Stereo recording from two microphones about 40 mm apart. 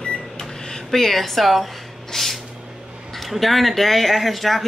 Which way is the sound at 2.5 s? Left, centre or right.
Centre.